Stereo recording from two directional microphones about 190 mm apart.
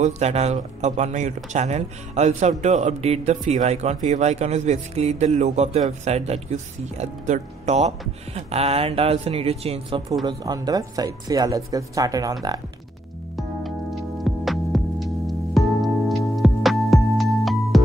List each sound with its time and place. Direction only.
0.0 s speech: 35° right (ahead or behind); by 12.4 s 20° right (ahead or behind)
13.4 s music: centre (ahead or behind)